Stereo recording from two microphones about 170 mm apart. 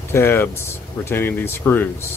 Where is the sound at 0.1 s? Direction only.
15° left (ahead or behind).